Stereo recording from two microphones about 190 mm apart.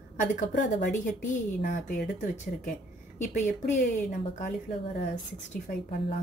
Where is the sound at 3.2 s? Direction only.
40° left (ahead or behind).